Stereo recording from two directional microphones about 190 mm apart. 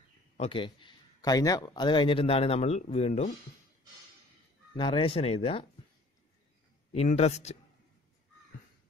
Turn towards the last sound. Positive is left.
turn(degrees=35)  # may be behind; listen again after turning